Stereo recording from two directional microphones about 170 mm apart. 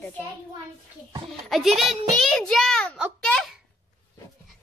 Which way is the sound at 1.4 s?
Centre (ahead or behind).